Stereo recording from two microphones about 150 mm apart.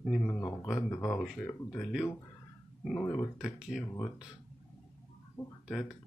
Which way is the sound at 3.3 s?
5° right (ahead or behind).